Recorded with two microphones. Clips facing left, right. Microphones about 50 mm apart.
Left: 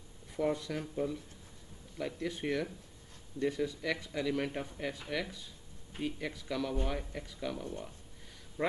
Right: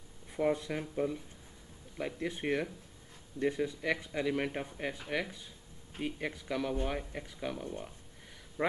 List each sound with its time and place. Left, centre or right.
0.3 s speech: right